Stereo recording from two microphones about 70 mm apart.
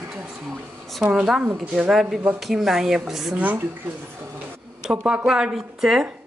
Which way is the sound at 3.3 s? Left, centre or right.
Right.